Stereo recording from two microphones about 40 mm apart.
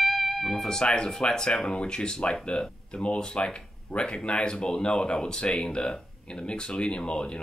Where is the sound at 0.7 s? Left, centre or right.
Left.